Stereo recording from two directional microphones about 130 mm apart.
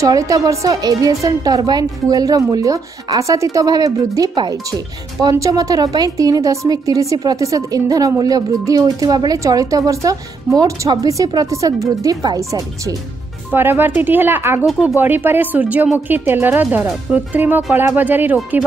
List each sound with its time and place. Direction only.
0.0 s a woman's voice: 25° right (ahead or behind)
14.7 s speech: centre (ahead or behind)
15.0 s speech: 15° right (ahead or behind)